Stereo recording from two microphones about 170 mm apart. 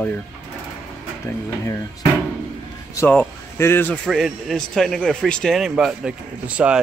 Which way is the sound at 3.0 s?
10° left (ahead or behind).